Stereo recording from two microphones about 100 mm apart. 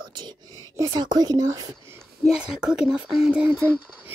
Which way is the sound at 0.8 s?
40° right (ahead or behind).